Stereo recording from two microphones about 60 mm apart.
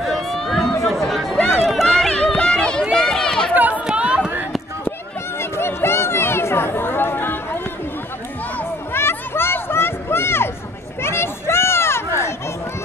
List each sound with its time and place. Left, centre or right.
0.0 s run: centre
2.0 s a sound: centre
2.8 s run: centre
3.5 s chatter: right
5.4 s chatter: left
8.9 s a sound: left